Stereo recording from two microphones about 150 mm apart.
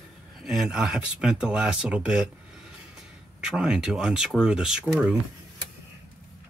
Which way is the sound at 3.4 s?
5° right (ahead or behind).